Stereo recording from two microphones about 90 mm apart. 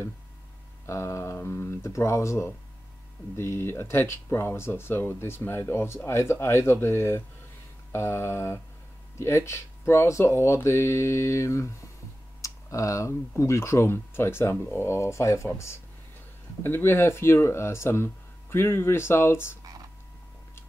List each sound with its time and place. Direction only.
0.8 s speech: 30° left (ahead or behind)
12.4 s typing: 35° left (ahead or behind)
13.4 s speech: 30° left (ahead or behind)